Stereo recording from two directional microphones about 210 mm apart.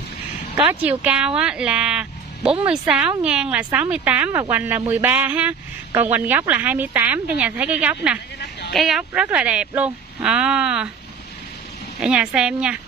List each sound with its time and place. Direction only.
0.7 s speech: 5° right (ahead or behind)
8.4 s a sound: 50° left (ahead or behind)
8.7 s speech: centre (ahead or behind)
12.0 s speech: 5° right (ahead or behind)